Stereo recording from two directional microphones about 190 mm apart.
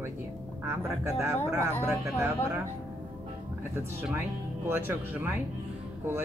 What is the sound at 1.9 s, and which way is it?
Speech, 10° right (ahead or behind).